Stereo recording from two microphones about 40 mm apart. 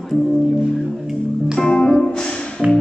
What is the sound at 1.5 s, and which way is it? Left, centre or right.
Music, centre.